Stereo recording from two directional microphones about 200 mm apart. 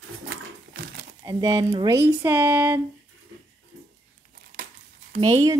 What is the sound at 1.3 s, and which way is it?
Speech, 15° right (ahead or behind).